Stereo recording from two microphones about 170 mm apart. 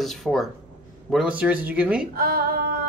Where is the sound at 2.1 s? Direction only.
65° right (ahead or behind).